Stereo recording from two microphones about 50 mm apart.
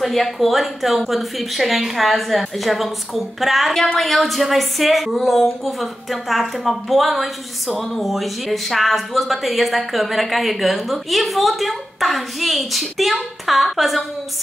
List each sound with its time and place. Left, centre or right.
0.0 s speech: centre